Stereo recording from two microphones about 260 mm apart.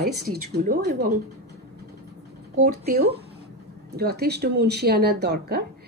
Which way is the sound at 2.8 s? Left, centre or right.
Right.